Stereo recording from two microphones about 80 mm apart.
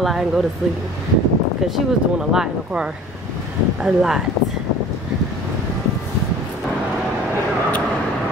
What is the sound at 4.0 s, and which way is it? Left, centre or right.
Speech, centre.